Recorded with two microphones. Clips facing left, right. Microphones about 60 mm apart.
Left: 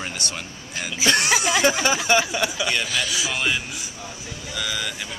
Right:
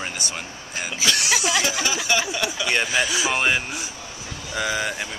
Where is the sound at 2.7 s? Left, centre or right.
Right.